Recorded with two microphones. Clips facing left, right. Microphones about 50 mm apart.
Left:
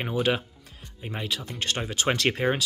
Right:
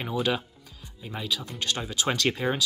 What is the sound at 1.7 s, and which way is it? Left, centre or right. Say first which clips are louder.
Speech: left 2 dB; left.